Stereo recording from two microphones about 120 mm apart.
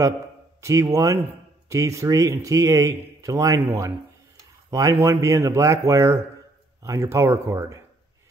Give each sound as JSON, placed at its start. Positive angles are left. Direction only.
{"t": 0.6, "sound": "a man's voice", "side_deg": -25}